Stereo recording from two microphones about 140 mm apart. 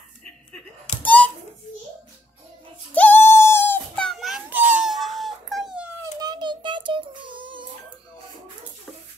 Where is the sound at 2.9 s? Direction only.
10° left (ahead or behind).